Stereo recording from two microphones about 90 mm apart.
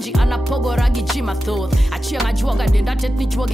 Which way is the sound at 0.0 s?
Centre (ahead or behind).